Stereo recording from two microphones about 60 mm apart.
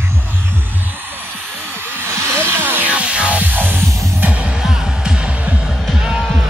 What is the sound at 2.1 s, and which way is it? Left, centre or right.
Hair dryer, right.